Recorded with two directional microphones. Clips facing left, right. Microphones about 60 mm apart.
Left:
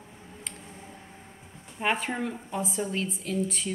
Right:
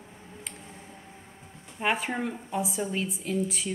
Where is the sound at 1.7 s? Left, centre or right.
Centre.